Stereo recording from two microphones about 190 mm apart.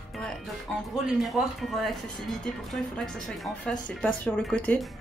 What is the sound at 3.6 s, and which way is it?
Speech, 5° left (ahead or behind).